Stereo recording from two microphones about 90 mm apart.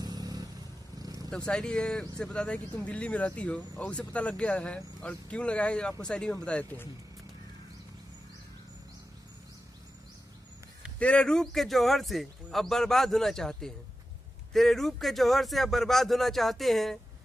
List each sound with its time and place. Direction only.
0.0 s vehicle: 45° right (ahead or behind)
0.9 s purr: 45° right (ahead or behind)
1.3 s speech: 10° left (ahead or behind)
11.0 s a man's voice: 10° left (ahead or behind)